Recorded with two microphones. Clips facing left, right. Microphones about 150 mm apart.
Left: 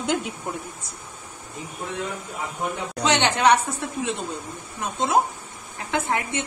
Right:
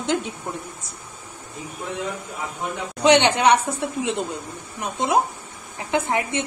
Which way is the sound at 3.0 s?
20° right (ahead or behind).